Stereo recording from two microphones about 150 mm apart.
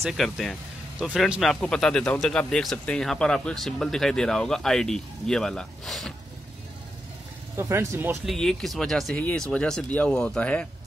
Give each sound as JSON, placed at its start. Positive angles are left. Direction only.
{"t": 0.0, "sound": "speech", "side_deg": 0}
{"t": 7.5, "sound": "speech", "side_deg": -20}
{"t": 8.3, "sound": "speech", "side_deg": 5}